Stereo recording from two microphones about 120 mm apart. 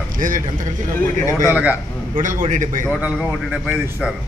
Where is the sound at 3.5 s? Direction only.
10° right (ahead or behind).